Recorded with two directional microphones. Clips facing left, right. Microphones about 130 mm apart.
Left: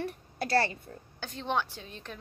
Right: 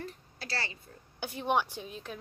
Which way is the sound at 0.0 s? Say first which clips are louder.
Left 8 dB; 55° left (ahead or behind).